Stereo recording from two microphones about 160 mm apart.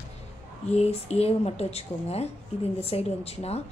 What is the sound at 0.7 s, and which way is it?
A woman's voice, 40° left (ahead or behind).